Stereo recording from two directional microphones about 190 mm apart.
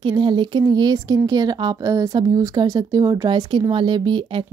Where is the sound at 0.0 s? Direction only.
25° right (ahead or behind).